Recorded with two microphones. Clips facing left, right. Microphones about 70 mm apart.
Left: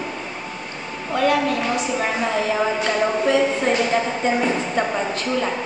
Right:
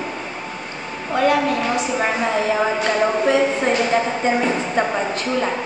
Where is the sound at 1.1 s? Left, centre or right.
Right.